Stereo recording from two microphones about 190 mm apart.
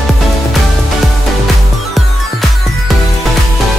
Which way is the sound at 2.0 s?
Centre (ahead or behind).